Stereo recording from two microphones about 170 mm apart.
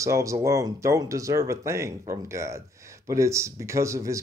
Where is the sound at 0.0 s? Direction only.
20° right (ahead or behind).